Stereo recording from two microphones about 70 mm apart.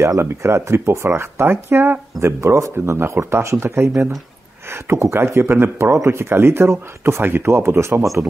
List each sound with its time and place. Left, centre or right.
0.0 s speech: right